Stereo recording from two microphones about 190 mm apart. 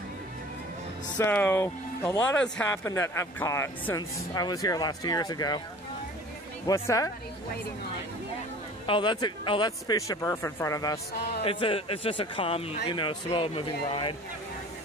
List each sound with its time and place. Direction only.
1.1 s speech: 10° left (ahead or behind)
6.6 s speech: 15° left (ahead or behind)
8.8 s a man's voice: 25° left (ahead or behind)
11.4 s a man's voice: 30° left (ahead or behind)